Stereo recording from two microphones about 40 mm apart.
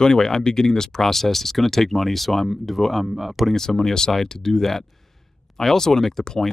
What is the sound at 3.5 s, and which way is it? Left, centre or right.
Speech, centre.